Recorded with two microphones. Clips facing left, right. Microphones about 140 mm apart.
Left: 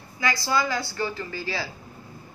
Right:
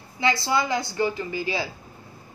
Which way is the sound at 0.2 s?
25° right (ahead or behind).